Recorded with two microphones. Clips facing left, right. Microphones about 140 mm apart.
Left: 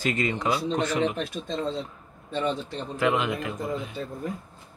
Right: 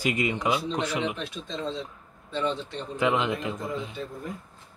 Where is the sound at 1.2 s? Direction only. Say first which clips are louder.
Left 4 dB; 50° left (ahead or behind).